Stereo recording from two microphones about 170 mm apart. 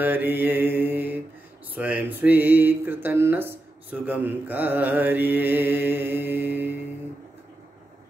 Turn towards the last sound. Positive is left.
turn(degrees=-10)  # may be behind; listen again after turning